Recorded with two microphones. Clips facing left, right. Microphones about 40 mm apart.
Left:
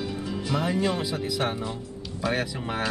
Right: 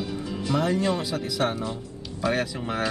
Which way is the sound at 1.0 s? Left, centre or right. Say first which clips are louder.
Right 1 dB; centre.